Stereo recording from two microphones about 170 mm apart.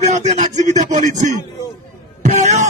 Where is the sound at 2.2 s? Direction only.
45° right (ahead or behind).